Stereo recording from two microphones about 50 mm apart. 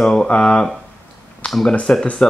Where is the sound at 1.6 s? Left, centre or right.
Centre.